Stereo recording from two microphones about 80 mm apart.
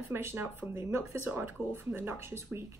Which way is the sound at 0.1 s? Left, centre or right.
Right.